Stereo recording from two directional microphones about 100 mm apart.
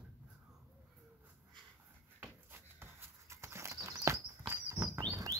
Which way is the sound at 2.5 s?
25° right (ahead or behind).